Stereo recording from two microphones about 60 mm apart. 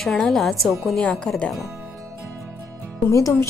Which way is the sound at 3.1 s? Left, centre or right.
Left.